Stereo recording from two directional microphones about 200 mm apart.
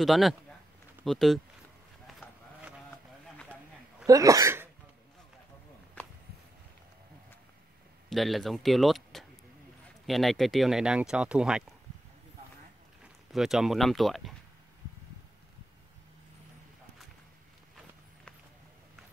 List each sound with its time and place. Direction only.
0.0 s speech: centre (ahead or behind)
2.0 s a sound: centre (ahead or behind)
4.0 s speech: 15° right (ahead or behind)
8.1 s speech: centre (ahead or behind)
13.3 s speech: centre (ahead or behind)